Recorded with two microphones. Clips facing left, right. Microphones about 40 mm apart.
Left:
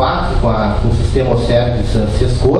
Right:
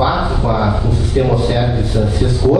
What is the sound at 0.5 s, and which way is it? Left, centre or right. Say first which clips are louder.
A man's voice: left 1 dB; centre.